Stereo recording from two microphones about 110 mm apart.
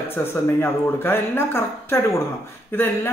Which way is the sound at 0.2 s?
20° left (ahead or behind).